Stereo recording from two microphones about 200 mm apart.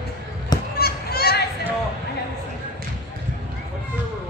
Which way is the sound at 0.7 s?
50° left (ahead or behind).